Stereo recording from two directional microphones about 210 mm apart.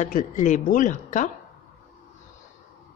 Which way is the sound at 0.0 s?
35° left (ahead or behind).